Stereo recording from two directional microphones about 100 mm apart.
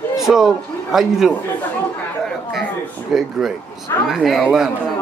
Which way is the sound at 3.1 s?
5° right (ahead or behind).